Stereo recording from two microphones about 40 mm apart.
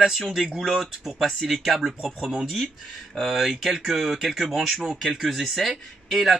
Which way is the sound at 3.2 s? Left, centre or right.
Centre.